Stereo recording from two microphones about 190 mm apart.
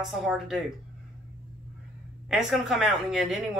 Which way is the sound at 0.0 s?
Centre (ahead or behind).